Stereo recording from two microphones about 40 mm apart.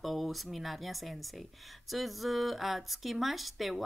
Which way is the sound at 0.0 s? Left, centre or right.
Centre.